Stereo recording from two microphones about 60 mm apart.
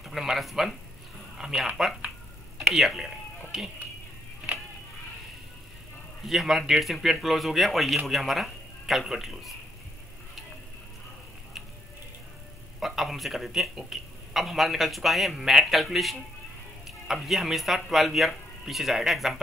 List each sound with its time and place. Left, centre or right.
0.0 s a man's voice: centre
4.5 s music: right
6.2 s a man's voice: centre
12.8 s a man's voice: centre